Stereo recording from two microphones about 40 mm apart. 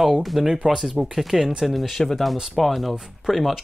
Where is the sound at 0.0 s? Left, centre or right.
Centre.